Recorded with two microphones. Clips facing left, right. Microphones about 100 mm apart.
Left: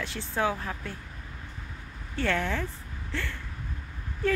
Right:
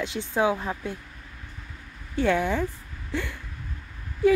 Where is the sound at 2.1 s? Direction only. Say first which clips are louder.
Right 5 dB; 15° right (ahead or behind).